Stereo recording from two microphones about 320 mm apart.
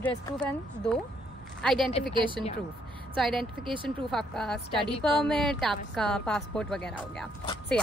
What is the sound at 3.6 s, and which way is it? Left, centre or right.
Speech, centre.